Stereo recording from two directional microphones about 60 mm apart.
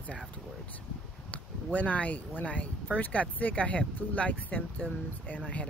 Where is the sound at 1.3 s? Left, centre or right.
Left.